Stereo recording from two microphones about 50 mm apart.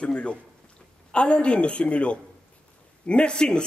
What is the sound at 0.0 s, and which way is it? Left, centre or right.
A woman's voice, left.